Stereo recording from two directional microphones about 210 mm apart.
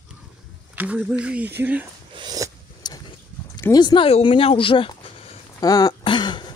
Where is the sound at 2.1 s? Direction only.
20° right (ahead or behind).